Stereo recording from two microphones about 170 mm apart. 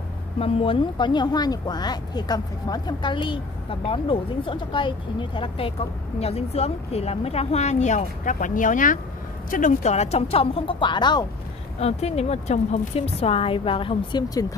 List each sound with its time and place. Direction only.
0.4 s a woman's voice: 30° left (ahead or behind)
11.8 s a woman's voice: 40° left (ahead or behind)